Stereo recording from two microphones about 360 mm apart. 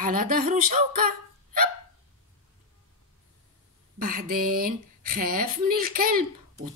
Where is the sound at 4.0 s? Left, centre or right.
Right.